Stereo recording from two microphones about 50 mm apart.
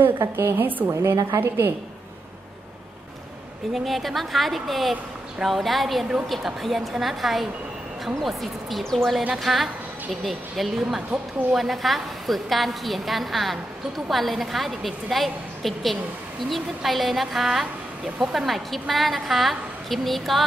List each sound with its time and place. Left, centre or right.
0.2 s a woman's voice: right
0.6 s a woman's voice: right
0.8 s a woman's voice: right
3.7 s a woman's voice: centre